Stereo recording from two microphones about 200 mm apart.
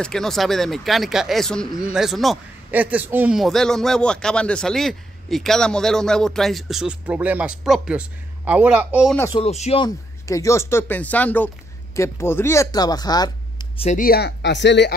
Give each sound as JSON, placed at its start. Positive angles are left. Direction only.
{"t": 0.0, "sound": "speech", "side_deg": 0}
{"t": 9.3, "sound": "speech", "side_deg": 30}
{"t": 9.8, "sound": "speech", "side_deg": 15}
{"t": 13.8, "sound": "speech", "side_deg": 45}